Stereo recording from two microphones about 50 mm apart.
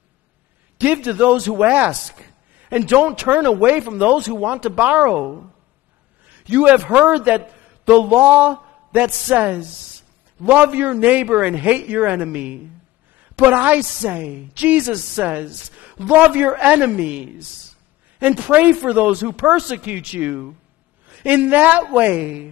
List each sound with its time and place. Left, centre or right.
0.7 s a man's voice: right